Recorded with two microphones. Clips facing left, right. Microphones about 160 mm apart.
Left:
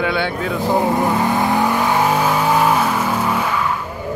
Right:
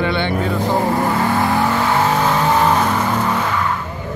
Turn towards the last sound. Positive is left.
turn(degrees=10)  # may be behind; listen again after turning